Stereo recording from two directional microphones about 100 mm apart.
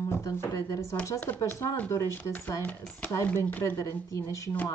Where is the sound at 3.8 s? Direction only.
30° left (ahead or behind).